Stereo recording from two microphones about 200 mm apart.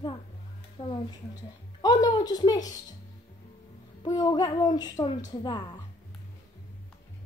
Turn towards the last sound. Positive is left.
turn(degrees=20)  # may be behind; listen again after turning